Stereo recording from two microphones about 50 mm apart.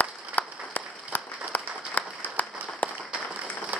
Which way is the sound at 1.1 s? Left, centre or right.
Left.